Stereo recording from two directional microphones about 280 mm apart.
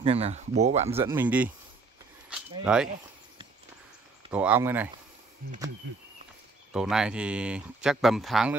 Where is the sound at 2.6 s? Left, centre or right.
Centre.